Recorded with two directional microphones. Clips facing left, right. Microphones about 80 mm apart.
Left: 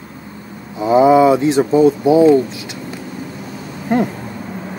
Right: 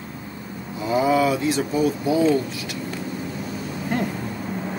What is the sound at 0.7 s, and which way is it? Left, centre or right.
Speech, left.